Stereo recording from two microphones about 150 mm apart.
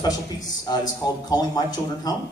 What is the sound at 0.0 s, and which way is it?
A man's voice, 25° left (ahead or behind).